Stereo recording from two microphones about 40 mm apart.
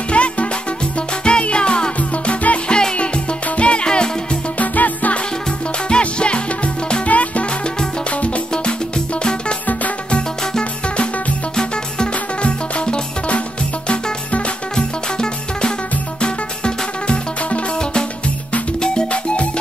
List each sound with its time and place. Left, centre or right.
0.1 s music: left
2.0 s music: left
4.6 s music: left
5.9 s music: left
8.9 s music: left
10.6 s music: left
15.1 s music: left